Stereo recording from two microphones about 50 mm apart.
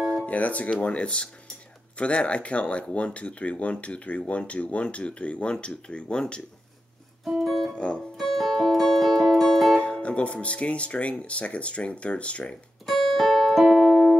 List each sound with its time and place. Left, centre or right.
0.3 s speech: left
7.2 s music: centre
7.7 s speech: left
8.2 s music: centre
9.8 s speech: centre
12.8 s music: centre